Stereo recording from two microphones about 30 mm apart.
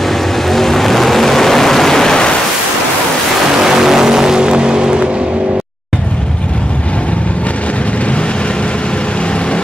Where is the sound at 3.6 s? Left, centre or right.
Centre.